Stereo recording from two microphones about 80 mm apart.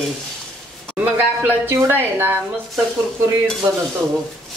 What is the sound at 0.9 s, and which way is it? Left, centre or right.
Speech, right.